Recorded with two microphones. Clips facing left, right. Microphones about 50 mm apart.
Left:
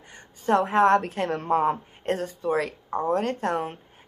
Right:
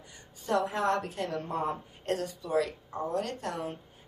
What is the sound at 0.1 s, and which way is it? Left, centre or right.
A woman's voice, left.